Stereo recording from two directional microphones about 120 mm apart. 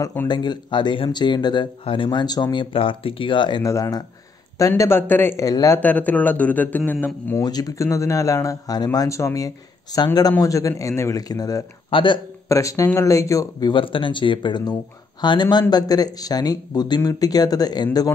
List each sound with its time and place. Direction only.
0.3 s speech: 40° left (ahead or behind)
3.6 s speech: 25° left (ahead or behind)
5.4 s speech: 30° left (ahead or behind)
5.8 s speech: 15° left (ahead or behind)
7.4 s speech: 30° left (ahead or behind)
11.9 s speech: 45° left (ahead or behind)
12.4 s speech: 25° left (ahead or behind)